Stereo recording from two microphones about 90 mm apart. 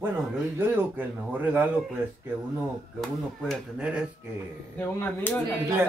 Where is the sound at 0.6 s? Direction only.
20° right (ahead or behind).